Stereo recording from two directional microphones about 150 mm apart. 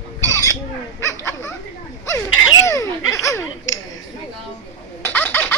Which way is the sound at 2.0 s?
20° left (ahead or behind).